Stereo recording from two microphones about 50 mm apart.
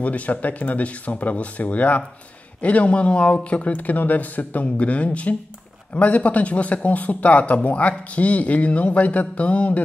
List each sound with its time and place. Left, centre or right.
0.0 s speech: left